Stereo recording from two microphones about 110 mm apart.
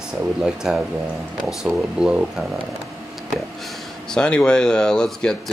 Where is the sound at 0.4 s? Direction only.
5° right (ahead or behind).